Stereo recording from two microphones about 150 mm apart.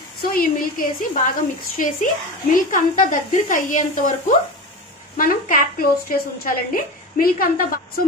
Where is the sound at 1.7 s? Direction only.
60° left (ahead or behind).